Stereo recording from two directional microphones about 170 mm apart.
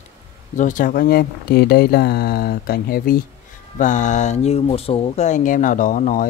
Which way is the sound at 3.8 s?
45° left (ahead or behind).